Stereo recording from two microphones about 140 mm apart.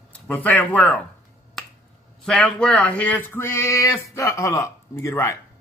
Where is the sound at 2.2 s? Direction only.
10° left (ahead or behind).